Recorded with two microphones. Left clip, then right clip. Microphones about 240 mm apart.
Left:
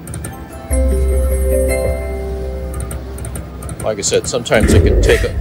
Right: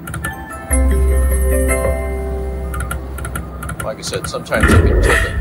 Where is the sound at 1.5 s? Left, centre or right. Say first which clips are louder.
Left 2 dB; right.